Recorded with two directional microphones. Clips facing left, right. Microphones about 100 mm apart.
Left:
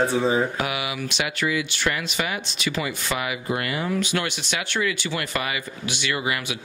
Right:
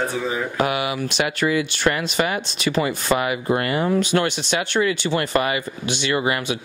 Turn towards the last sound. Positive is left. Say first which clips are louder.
# right 5 dB
turn(degrees=-30)  # may be behind; listen again after turning